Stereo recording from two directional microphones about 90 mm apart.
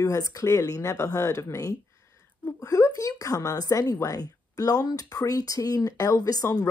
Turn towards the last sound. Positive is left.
turn(degrees=40)  # may be behind; listen again after turning